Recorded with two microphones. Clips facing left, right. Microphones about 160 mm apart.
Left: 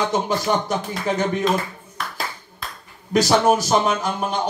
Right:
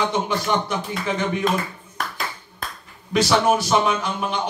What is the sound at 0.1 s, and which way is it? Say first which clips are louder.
A man's voice: left 2 dB; 40° left (ahead or behind).